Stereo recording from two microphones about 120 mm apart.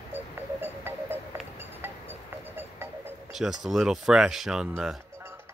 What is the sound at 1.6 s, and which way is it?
Music, 15° right (ahead or behind).